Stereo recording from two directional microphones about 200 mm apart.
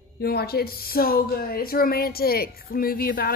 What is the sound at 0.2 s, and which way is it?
Speech, 50° left (ahead or behind).